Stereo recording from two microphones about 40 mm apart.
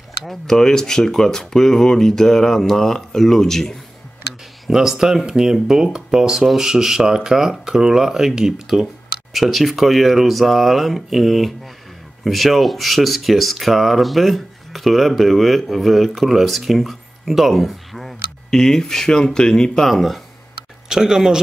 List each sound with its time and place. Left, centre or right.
0.3 s speech: centre
4.3 s speech: centre
9.3 s speech: centre
18.5 s speech: centre
19.9 s speech: centre
20.9 s speech: centre